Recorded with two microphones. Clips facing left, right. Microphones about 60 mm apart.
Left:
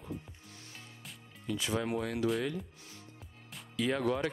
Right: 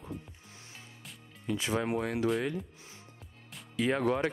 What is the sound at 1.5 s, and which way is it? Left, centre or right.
Speech, right.